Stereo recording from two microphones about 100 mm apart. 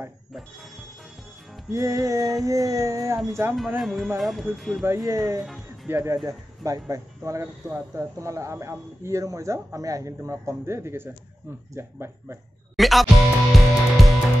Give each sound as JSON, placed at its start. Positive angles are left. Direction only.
{"t": 0.3, "sound": "speech", "side_deg": 0}
{"t": 1.7, "sound": "speech", "side_deg": -30}
{"t": 3.8, "sound": "speech", "side_deg": 0}
{"t": 4.8, "sound": "speech", "side_deg": -30}
{"t": 12.7, "sound": "music", "side_deg": 0}